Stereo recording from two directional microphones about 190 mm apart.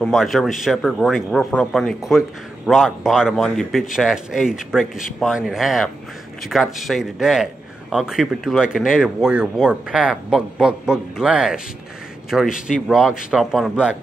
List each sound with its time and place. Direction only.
0.0 s speech: centre (ahead or behind)
12.5 s speech: 45° left (ahead or behind)
12.8 s speech: 5° right (ahead or behind)